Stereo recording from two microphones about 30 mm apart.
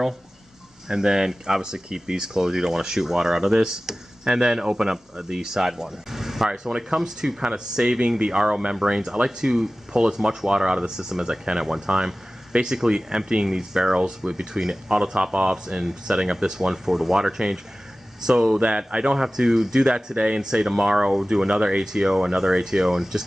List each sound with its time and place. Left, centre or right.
0.8 s speech: centre
6.7 s speech: right
18.6 s speech: right
19.1 s speech: centre